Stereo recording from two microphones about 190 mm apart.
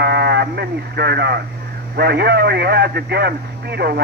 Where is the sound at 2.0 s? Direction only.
60° right (ahead or behind).